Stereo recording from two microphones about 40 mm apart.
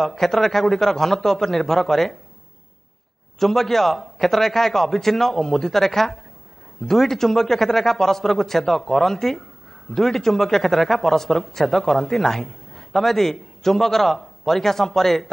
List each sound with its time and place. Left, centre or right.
0.0 s speech: centre
3.3 s speech: centre